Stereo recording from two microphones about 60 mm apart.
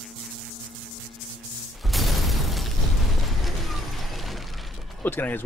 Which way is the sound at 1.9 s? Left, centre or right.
Centre.